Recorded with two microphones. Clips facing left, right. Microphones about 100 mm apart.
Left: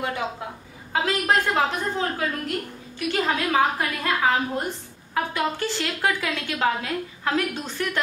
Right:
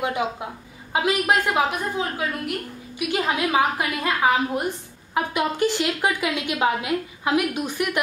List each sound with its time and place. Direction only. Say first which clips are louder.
0.9 s a woman's voice: right 1 dB; 15° right (ahead or behind)